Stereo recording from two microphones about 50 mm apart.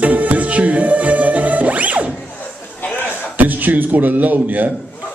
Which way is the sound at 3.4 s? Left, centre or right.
Right.